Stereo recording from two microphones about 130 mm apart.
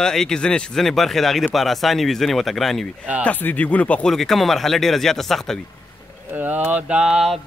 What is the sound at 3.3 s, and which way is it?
Speech, 15° left (ahead or behind).